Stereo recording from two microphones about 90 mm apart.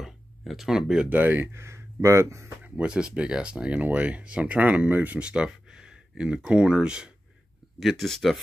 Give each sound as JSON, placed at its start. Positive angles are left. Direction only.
{"t": 0.0, "sound": "speech", "side_deg": 0}
{"t": 1.1, "sound": "speech", "side_deg": -20}
{"t": 2.6, "sound": "speech", "side_deg": -10}
{"t": 7.8, "sound": "speech", "side_deg": 5}